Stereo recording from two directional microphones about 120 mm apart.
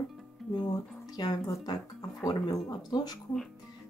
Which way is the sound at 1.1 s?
35° left (ahead or behind).